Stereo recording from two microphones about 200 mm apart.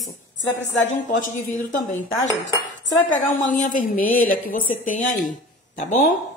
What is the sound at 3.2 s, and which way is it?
A woman's voice, 40° left (ahead or behind).